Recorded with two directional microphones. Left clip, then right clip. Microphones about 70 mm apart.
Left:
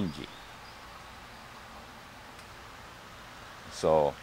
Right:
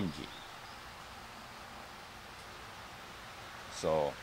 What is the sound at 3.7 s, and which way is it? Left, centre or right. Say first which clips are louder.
Speech: left 7 dB; left.